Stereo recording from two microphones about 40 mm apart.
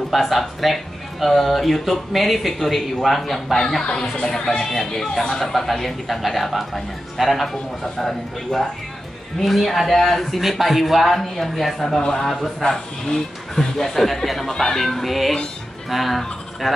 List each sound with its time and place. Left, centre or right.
0.1 s speech: centre
4.6 s speech: centre
12.6 s speech: centre
14.5 s speech: centre
14.8 s speech: centre